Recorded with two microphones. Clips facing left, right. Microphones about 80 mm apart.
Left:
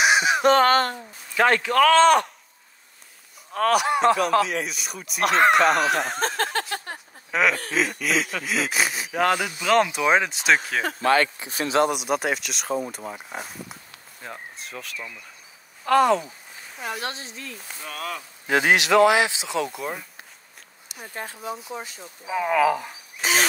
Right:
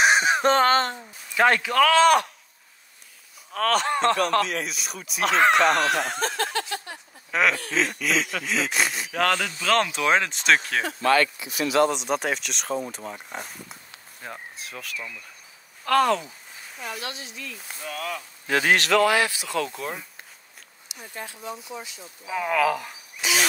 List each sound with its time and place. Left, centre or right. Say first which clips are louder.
0.0 s speech: left 1 dB; right
1.3 s speech: left 1 dB; centre
3.5 s speech: left 2 dB; centre
6.1 s a sound: left 2 dB; left
7.2 s speech: left 1 dB; centre
11.0 s speech: even; left
11.8 s speech: even; centre
16.8 s speech: left 4 dB; left
17.1 s speech: left 1 dB; left
17.6 s speech: right 1 dB; centre
19.7 s speech: left 1 dB; centre
20.9 s speech: left 3 dB; left
22.3 s speech: left 2 dB; centre
23.2 s speech: left 2 dB; left